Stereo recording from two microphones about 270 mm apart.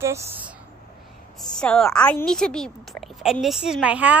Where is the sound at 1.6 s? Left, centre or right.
Centre.